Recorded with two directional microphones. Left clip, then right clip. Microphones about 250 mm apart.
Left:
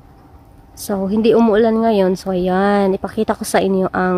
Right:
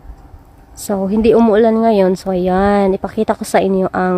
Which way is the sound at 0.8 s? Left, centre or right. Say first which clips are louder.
Right 2 dB; centre.